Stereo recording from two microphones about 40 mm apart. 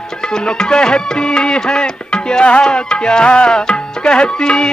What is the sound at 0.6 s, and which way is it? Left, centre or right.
Music, centre.